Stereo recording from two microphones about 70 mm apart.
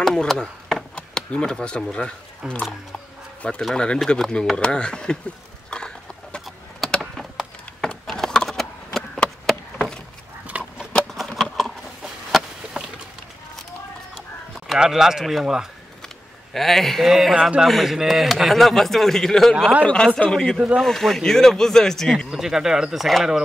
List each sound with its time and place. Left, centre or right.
0.0 s chop: centre
0.9 s speech: centre
3.7 s speech: centre
5.7 s a sound: centre
10.5 s a sound: centre
10.9 s a sound: centre
12.0 s chicken: centre
12.7 s a sound: centre
14.8 s speech: centre
16.5 s speech: centre
20.5 s speech: centre
20.8 s speech: centre
22.3 s speech: centre